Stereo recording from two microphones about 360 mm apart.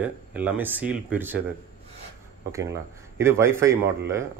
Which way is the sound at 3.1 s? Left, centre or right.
Centre.